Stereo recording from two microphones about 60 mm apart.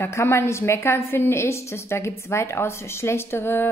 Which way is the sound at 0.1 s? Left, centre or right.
Left.